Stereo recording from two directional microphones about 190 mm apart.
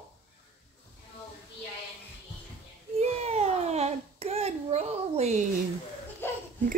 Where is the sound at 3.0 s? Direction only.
35° right (ahead or behind).